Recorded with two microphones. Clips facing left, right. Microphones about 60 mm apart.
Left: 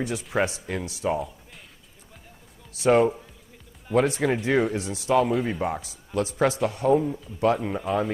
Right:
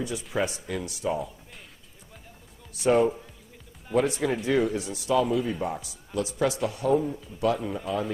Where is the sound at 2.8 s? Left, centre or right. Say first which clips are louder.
Left 2 dB; left.